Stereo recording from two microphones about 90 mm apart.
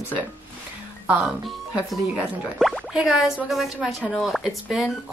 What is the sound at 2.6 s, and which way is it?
Speech, centre (ahead or behind).